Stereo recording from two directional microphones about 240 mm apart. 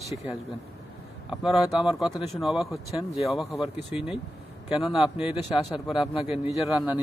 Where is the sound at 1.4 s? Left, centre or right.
Centre.